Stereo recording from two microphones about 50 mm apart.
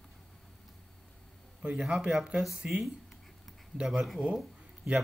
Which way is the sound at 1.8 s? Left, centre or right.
Centre.